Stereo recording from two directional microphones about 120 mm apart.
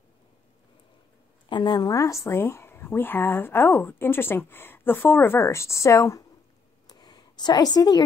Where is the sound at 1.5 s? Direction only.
40° left (ahead or behind).